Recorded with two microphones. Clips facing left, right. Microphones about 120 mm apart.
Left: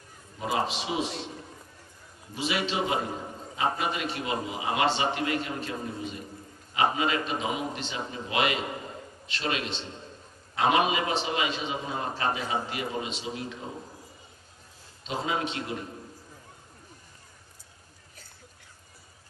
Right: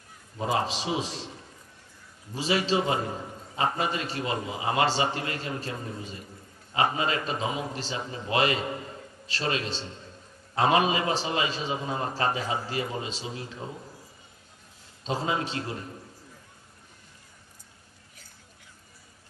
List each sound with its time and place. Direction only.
0.5 s a man's voice: 35° right (ahead or behind)
2.3 s a man's voice: 35° right (ahead or behind)
15.0 s a man's voice: 35° right (ahead or behind)